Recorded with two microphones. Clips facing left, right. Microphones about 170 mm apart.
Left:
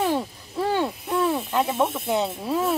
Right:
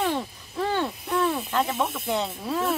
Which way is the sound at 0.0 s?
10° left (ahead or behind).